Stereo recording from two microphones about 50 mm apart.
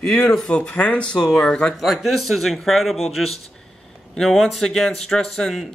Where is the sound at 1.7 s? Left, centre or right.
Centre.